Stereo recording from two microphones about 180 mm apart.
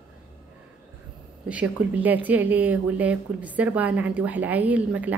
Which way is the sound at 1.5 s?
10° right (ahead or behind).